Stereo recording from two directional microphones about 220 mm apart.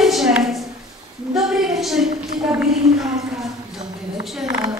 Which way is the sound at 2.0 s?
40° right (ahead or behind).